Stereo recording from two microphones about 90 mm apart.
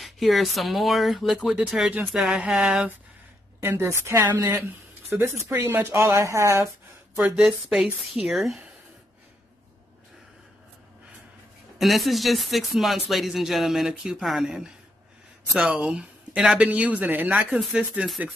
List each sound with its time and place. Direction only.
0.0 s speech: centre (ahead or behind)
3.6 s speech: 25° right (ahead or behind)
7.3 s speech: centre (ahead or behind)
11.8 s speech: centre (ahead or behind)